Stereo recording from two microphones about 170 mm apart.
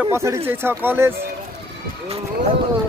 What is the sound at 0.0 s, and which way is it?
Speech, 15° right (ahead or behind).